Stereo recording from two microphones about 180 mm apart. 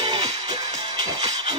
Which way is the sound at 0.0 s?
25° right (ahead or behind).